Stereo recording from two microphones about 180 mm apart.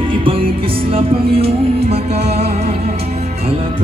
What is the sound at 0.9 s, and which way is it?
Music, 30° right (ahead or behind).